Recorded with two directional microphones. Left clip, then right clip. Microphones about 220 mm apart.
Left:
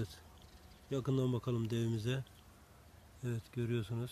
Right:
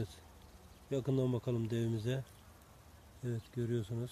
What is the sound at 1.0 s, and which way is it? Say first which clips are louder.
Speech: right 1 dB; 30° left (ahead or behind).